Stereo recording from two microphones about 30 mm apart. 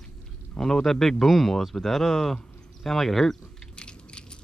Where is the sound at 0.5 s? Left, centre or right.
Centre.